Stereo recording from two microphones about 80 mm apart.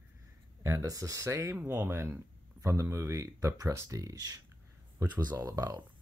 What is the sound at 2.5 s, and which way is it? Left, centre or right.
Speech, right.